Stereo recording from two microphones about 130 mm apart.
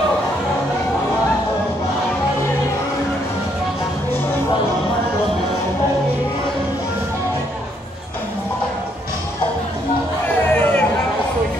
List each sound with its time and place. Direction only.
10.2 s music: 15° left (ahead or behind)